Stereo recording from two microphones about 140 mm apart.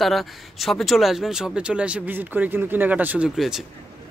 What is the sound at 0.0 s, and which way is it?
Speech, centre (ahead or behind).